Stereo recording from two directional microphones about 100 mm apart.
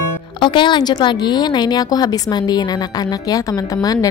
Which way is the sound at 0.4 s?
50° left (ahead or behind).